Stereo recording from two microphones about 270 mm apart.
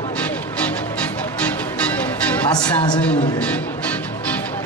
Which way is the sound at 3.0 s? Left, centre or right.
Centre.